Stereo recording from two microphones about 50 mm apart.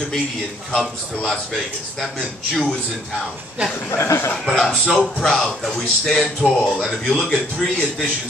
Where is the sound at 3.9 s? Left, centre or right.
Left.